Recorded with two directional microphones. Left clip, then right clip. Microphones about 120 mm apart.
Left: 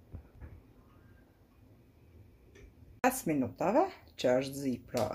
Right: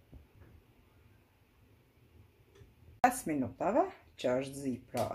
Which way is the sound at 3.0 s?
15° left (ahead or behind).